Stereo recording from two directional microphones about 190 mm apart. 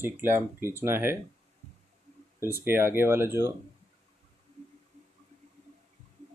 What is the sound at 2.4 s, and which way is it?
Speech, 10° right (ahead or behind).